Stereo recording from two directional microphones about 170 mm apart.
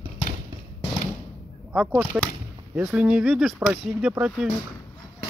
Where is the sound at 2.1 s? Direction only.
5° right (ahead or behind).